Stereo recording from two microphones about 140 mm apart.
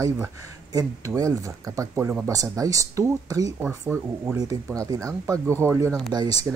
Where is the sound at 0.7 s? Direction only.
25° right (ahead or behind).